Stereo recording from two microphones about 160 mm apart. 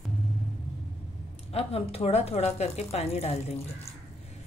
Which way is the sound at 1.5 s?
40° left (ahead or behind).